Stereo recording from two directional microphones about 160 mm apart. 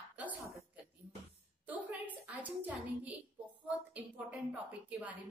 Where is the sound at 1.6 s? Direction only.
10° right (ahead or behind).